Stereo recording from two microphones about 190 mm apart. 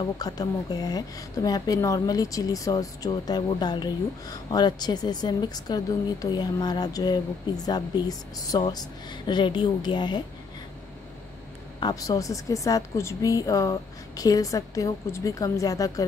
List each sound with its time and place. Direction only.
0.2 s a woman's voice: 20° left (ahead or behind)
11.8 s a woman's voice: 20° left (ahead or behind)